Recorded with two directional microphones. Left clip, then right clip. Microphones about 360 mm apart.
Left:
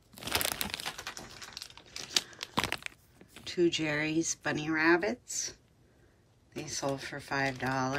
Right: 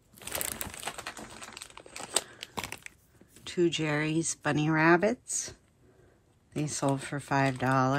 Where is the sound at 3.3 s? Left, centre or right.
Centre.